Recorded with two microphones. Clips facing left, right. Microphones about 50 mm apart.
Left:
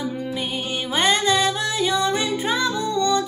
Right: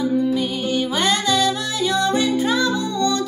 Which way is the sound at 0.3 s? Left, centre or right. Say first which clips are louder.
Right 5 dB; left.